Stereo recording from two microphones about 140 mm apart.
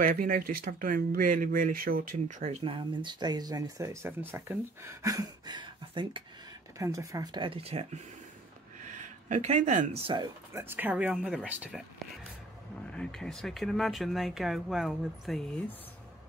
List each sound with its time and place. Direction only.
0.0 s speech: 85° right; by 6.2 s 35° right (ahead or behind)
6.8 s speech: 25° right (ahead or behind)
7.4 s speech: 45° right (ahead or behind)
8.8 s a sound: 60° right (ahead or behind)
9.9 s speech: 40° right (ahead or behind)
10.5 s speech: 15° right (ahead or behind)
12.9 s speech: 5° left (ahead or behind)